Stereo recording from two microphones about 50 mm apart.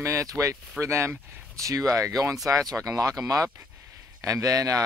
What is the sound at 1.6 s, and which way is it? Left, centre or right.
Speech, right.